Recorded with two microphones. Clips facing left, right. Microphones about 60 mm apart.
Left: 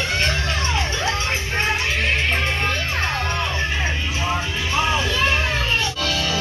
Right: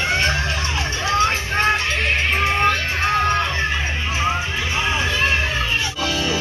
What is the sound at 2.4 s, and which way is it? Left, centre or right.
Music, centre.